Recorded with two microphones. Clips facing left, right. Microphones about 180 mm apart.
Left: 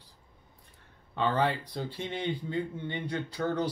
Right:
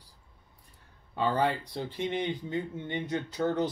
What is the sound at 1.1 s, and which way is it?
Speech, 10° right (ahead or behind).